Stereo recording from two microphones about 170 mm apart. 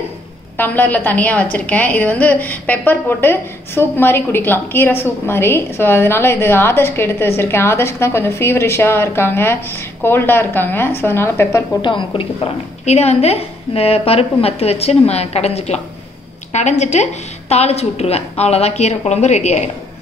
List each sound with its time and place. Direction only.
0.6 s a woman's voice: 10° left (ahead or behind)
11.8 s a woman's voice: 30° left (ahead or behind)